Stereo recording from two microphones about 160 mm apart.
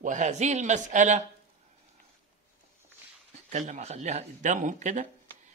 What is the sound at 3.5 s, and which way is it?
Speech, 50° right (ahead or behind).